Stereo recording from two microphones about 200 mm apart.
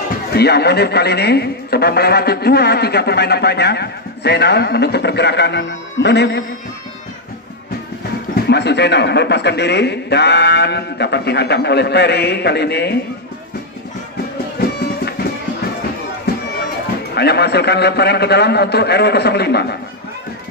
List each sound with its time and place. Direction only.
0.3 s a man's voice: 55° left (ahead or behind)
8.4 s a man's voice: 55° left (ahead or behind)
14.6 s music: 50° left (ahead or behind)
17.1 s a man's voice: 55° left (ahead or behind)